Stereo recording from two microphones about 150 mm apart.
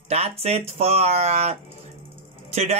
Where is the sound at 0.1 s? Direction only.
45° right (ahead or behind).